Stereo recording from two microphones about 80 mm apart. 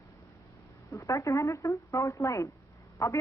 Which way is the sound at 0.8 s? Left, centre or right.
Left.